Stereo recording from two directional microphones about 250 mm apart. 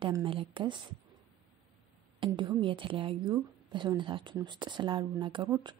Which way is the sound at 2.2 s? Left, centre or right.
Centre.